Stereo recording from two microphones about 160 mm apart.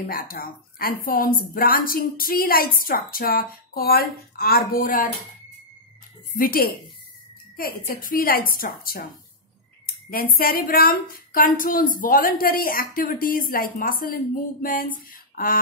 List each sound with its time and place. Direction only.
0.0 s speech: 65° left (ahead or behind)
6.3 s a woman's voice: 65° left (ahead or behind)